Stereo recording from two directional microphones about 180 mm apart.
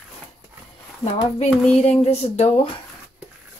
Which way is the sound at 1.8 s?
35° left (ahead or behind).